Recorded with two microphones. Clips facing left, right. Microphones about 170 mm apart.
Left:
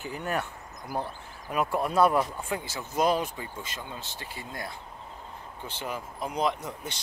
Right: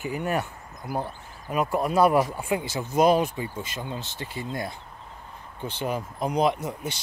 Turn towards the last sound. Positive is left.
turn(degrees=-5)  # may be behind; listen again after turning